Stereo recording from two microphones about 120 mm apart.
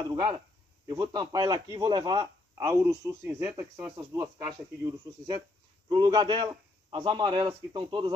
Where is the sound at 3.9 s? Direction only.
35° right (ahead or behind).